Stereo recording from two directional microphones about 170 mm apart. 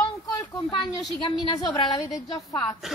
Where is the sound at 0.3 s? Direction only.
25° left (ahead or behind).